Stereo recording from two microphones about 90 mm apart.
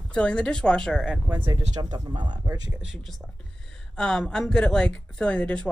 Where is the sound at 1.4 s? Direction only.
55° right (ahead or behind).